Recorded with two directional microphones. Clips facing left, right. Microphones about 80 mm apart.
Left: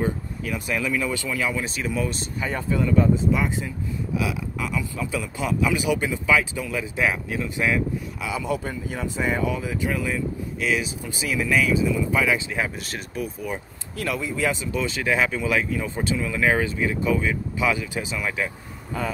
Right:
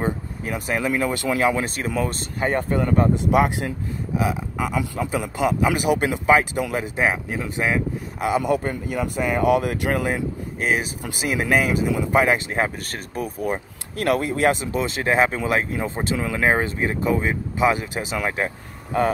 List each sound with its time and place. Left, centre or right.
0.5 s speech: right
4.2 s speech: right
8.2 s speech: right
11.1 s speech: right